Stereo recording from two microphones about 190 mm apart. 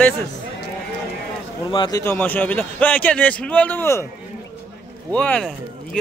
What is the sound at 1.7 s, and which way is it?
Speech, 20° left (ahead or behind).